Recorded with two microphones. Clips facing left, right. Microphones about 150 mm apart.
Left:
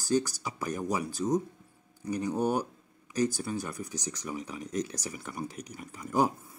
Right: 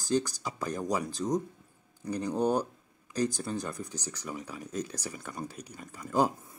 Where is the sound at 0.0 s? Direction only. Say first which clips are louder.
Left 1 dB; 15° right (ahead or behind).